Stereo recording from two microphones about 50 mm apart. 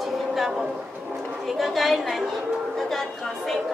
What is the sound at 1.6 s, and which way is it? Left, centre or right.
Speech, centre.